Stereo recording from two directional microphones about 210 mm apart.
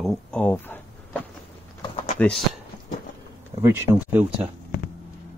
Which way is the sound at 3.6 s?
10° right (ahead or behind).